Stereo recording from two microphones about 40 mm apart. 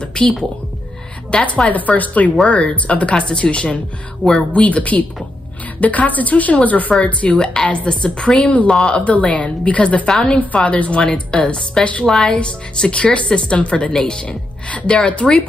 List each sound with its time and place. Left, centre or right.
0.2 s a woman's voice: left
1.7 s a woman's voice: left
4.5 s a woman's voice: left
8.9 s a woman's voice: left
10.0 s speech: centre
10.5 s a woman's voice: left
13.9 s speech: centre
14.7 s a woman's voice: left